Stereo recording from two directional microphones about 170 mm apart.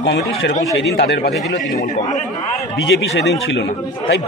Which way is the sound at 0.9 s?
75° left (ahead or behind).